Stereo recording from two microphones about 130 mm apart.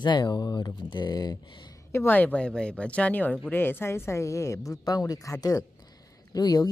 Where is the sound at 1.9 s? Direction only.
15° left (ahead or behind).